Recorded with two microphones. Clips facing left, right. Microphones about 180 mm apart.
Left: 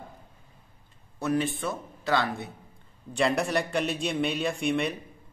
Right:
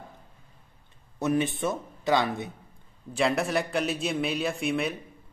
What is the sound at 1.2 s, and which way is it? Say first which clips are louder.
Speech: right 2 dB; 20° right (ahead or behind).